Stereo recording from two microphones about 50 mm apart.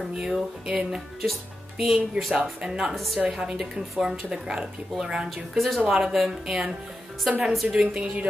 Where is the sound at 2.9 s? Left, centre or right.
Centre.